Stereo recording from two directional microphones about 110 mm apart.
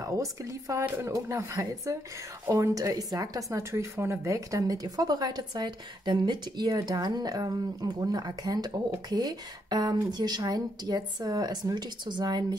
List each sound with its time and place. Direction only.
0.0 s a woman's voice: 30° right (ahead or behind)